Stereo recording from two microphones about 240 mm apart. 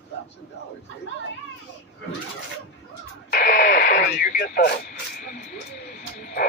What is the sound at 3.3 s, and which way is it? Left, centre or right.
Radio, left.